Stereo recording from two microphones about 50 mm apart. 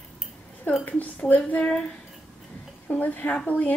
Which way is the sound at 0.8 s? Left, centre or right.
Left.